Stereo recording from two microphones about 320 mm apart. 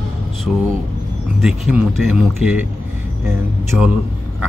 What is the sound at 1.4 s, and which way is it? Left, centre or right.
Speech, centre.